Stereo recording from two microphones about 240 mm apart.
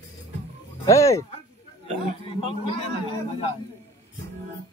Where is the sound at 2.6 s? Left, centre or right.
Left.